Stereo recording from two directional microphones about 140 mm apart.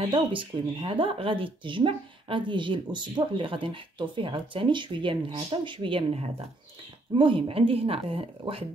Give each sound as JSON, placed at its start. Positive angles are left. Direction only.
{"t": 0.1, "sound": "speech", "side_deg": -35}